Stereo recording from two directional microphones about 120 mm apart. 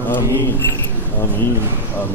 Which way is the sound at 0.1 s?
20° left (ahead or behind).